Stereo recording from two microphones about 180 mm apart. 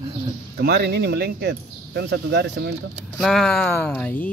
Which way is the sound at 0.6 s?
65° right (ahead or behind).